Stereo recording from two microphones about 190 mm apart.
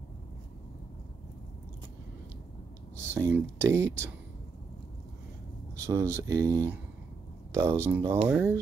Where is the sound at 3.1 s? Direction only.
15° right (ahead or behind).